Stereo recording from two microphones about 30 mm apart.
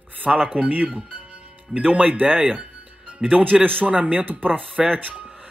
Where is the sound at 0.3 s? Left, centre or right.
Right.